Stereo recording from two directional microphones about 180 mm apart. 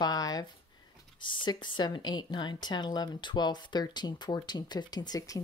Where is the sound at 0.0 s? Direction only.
20° left (ahead or behind).